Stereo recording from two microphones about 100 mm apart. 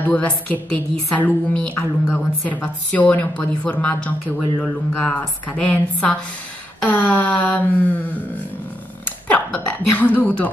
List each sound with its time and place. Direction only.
0.0 s a woman's voice: 15° left (ahead or behind)
9.0 s speech: 15° left (ahead or behind)